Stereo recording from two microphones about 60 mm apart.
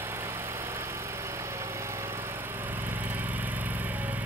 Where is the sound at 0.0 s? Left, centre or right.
Right.